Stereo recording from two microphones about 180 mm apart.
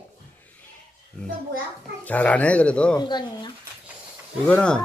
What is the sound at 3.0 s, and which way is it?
Speech, 25° left (ahead or behind).